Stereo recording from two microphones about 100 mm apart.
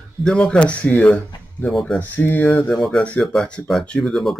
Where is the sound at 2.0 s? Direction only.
15° left (ahead or behind).